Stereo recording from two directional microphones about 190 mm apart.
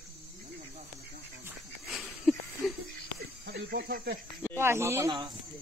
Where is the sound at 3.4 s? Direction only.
60° right (ahead or behind).